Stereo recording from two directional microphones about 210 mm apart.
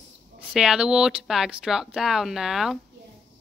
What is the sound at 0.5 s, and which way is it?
Speech, 5° right (ahead or behind).